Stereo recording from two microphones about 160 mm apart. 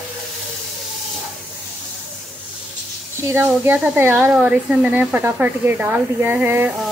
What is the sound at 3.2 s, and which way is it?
Speech, 15° right (ahead or behind).